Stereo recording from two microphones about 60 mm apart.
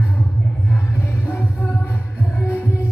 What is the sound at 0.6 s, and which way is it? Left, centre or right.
Music, left.